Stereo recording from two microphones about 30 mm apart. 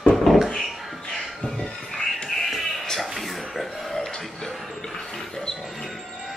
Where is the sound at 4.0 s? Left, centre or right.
Left.